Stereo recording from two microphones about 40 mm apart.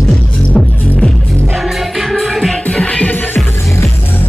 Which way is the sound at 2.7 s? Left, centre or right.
Left.